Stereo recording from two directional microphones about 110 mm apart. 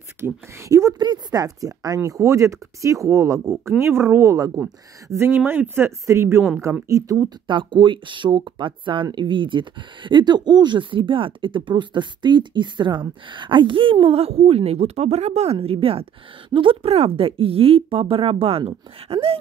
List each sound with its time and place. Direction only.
0.2 s speech: 25° right (ahead or behind)
0.9 s speech: 40° right (ahead or behind)
7.4 s speech: 45° right (ahead or behind)